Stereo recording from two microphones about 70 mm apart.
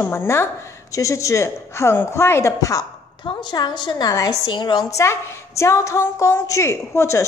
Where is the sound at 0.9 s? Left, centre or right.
Left.